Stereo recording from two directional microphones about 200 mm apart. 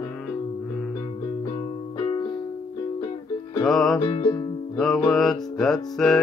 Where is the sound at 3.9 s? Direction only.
25° left (ahead or behind).